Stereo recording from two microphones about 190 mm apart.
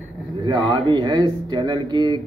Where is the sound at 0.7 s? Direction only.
25° right (ahead or behind).